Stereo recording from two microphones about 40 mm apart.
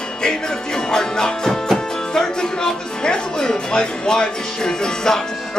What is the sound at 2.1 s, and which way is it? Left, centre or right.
Speech, centre.